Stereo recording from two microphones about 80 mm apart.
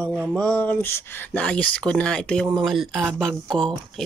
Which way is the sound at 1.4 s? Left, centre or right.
Centre.